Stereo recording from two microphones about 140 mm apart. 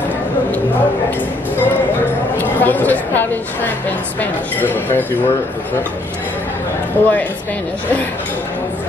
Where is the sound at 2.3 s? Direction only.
15° left (ahead or behind).